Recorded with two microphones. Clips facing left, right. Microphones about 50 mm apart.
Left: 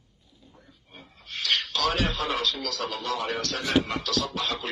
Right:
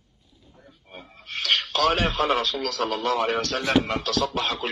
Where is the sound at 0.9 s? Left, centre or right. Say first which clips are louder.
Right 5 dB; right.